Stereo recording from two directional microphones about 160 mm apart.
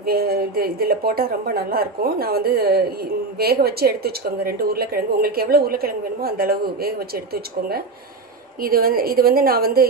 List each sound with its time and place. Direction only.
0.0 s a woman's voice: 70° right (ahead or behind)